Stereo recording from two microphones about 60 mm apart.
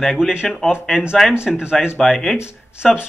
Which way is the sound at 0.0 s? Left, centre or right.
Centre.